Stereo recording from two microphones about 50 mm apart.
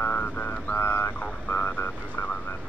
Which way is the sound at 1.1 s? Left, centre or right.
Left.